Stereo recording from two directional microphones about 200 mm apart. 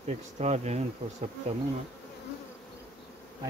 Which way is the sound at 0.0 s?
35° right (ahead or behind).